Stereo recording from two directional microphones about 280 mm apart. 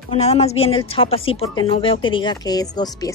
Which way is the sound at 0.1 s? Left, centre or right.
Left.